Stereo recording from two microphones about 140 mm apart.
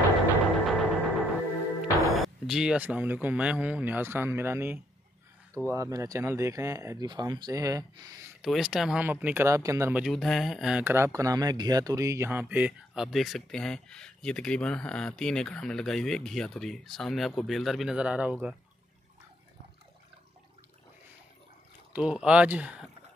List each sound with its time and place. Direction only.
0.7 s music: centre (ahead or behind)
2.0 s speech: centre (ahead or behind); by 8.2 s 25° right (ahead or behind)
8.4 s speech: 5° right (ahead or behind); by 9.9 s 20° right (ahead or behind)
9.9 s speech: centre (ahead or behind)
10.8 s speech: 15° right (ahead or behind)
21.9 s speech: 5° right (ahead or behind)